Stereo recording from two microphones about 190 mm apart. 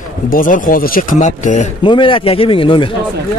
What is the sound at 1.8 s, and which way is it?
A man's voice, 25° left (ahead or behind).